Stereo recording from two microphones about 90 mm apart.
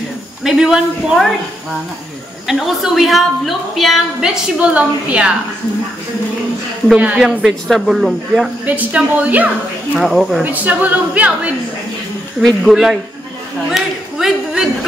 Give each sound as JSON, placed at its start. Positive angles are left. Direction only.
{"t": 0.4, "sound": "a woman's voice", "side_deg": -5}
{"t": 2.4, "sound": "a woman's voice", "side_deg": -5}
{"t": 7.0, "sound": "a woman's voice", "side_deg": -15}
{"t": 7.2, "sound": "a woman's voice", "side_deg": 0}
{"t": 8.6, "sound": "a woman's voice", "side_deg": -15}
{"t": 9.9, "sound": "a woman's voice", "side_deg": 0}
{"t": 10.4, "sound": "a woman's voice", "side_deg": -20}
{"t": 12.4, "sound": "a woman's voice", "side_deg": 0}
{"t": 13.7, "sound": "a sound", "side_deg": -5}